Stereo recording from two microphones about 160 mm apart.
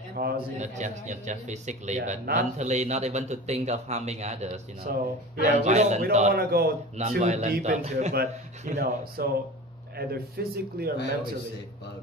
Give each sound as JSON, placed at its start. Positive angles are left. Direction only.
{"t": 0.2, "sound": "speech", "side_deg": -75}
{"t": 0.6, "sound": "a man's voice", "side_deg": -50}
{"t": 4.9, "sound": "speech", "side_deg": -65}
{"t": 5.4, "sound": "a man's voice", "side_deg": -45}
{"t": 6.3, "sound": "speech", "side_deg": -75}
{"t": 7.0, "sound": "a man's voice", "side_deg": -45}
{"t": 8.1, "sound": "speech", "side_deg": -75}